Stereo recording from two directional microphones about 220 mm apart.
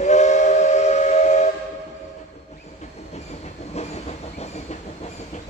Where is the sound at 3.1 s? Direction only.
30° left (ahead or behind).